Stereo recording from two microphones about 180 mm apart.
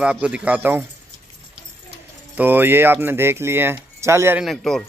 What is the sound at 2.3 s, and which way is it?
Speech, 10° right (ahead or behind).